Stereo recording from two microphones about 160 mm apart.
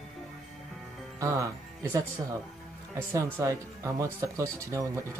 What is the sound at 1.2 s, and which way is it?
Speech, 20° right (ahead or behind).